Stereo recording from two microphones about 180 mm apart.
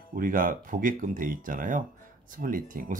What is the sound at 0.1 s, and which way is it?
Speech, 50° right (ahead or behind).